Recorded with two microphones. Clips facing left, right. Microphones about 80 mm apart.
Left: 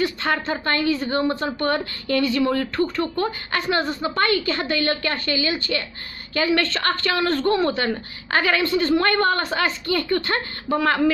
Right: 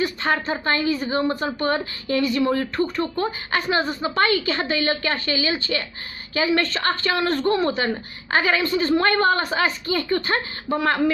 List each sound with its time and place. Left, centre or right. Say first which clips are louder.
0.0 s a woman's voice: even; centre
2.8 s speech: left 1 dB; centre
3.7 s a woman's voice: even; centre